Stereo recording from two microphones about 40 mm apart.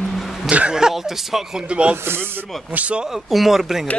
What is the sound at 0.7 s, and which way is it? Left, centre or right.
Speech, centre.